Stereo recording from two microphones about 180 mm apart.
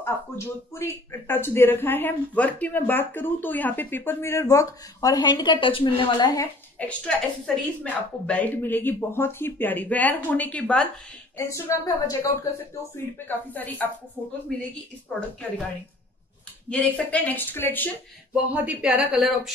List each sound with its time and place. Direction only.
0.0 s speech: 15° left (ahead or behind)
6.8 s speech: 5° left (ahead or behind)
13.5 s speech: 10° left (ahead or behind)
16.6 s speech: 5° left (ahead or behind)
18.3 s speech: 5° right (ahead or behind)